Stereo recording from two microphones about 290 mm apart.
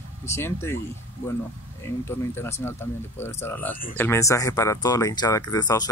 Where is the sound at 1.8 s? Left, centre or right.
Centre.